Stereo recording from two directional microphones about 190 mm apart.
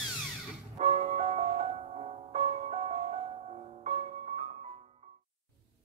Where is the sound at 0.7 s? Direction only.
35° right (ahead or behind).